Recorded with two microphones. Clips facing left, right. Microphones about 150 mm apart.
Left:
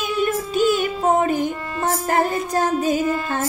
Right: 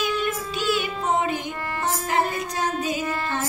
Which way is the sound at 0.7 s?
50° left (ahead or behind).